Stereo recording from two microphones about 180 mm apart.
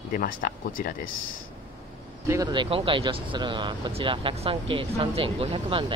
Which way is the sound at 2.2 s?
20° right (ahead or behind).